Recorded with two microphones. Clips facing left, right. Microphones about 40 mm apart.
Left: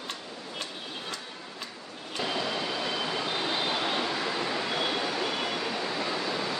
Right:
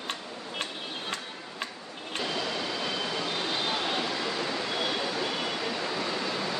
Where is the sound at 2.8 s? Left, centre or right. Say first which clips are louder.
Left 1 dB; centre.